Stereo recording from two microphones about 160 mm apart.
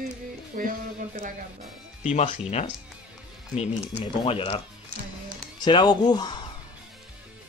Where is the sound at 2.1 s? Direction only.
45° left (ahead or behind).